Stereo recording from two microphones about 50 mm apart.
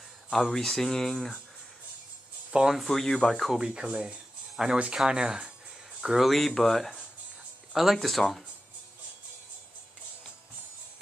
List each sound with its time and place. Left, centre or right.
0.3 s speech: centre
2.7 s speech: centre
3.5 s speech: right
4.6 s speech: centre
5.9 s a sound: centre
6.2 s speech: centre